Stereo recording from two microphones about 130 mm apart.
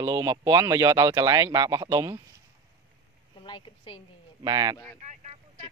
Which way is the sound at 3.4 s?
40° left (ahead or behind).